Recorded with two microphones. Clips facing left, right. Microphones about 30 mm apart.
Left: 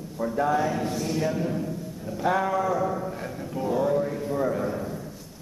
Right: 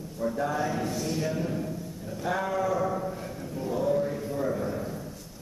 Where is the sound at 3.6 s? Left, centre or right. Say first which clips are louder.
Left 3 dB; left.